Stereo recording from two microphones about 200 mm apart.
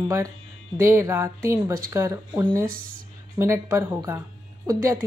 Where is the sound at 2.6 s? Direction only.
45° right (ahead or behind).